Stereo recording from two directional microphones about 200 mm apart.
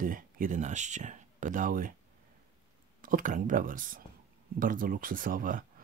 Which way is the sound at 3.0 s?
40° right (ahead or behind).